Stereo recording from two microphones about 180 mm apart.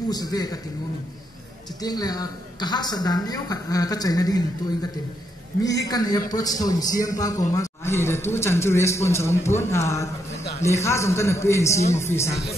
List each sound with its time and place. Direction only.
0.1 s a woman's voice: 20° left (ahead or behind)
1.8 s a woman's voice: 20° left (ahead or behind)
5.9 s a woman's voice: 20° left (ahead or behind)